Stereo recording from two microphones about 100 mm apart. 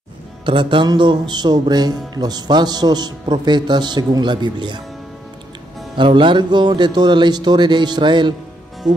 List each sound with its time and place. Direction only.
0.5 s speech: 55° right (ahead or behind)
5.9 s speech: 55° right (ahead or behind)